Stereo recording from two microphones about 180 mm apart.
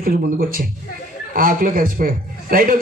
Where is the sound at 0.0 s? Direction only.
50° right (ahead or behind).